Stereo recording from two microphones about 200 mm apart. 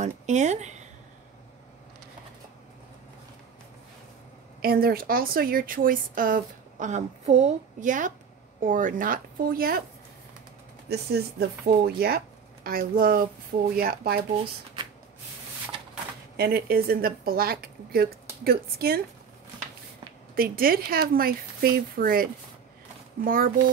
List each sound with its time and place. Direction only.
0.0 s speech: 35° right (ahead or behind)
4.6 s speech: 50° right (ahead or behind)
10.9 s speech: 55° right (ahead or behind)
16.3 s speech: 50° right (ahead or behind)
20.3 s speech: 50° right (ahead or behind)